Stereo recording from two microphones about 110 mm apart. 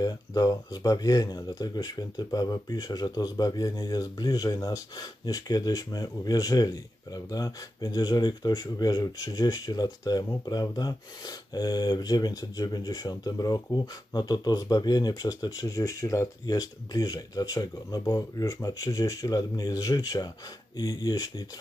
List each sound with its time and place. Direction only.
0.0 s speech: 35° left (ahead or behind)